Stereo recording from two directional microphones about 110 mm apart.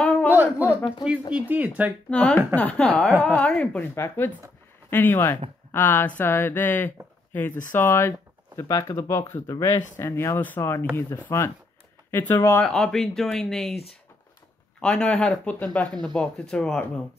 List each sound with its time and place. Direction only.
0.0 s a sound: 15° left (ahead or behind)
0.3 s a sound: 15° right (ahead or behind)
1.3 s speech: 10° right (ahead or behind)
2.0 s speech: 10° left (ahead or behind)
3.9 s speech: 25° left (ahead or behind)
12.6 s speech: 5° left (ahead or behind)